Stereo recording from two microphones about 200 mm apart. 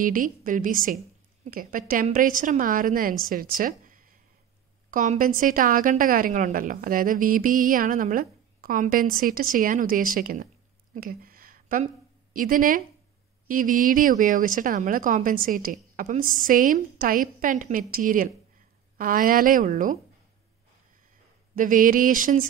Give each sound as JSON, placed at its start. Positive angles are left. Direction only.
{"t": 0.0, "sound": "a woman's voice", "side_deg": -45}
{"t": 11.0, "sound": "a sound", "side_deg": -45}
{"t": 12.4, "sound": "a woman's voice", "side_deg": -40}
{"t": 21.5, "sound": "speech", "side_deg": -40}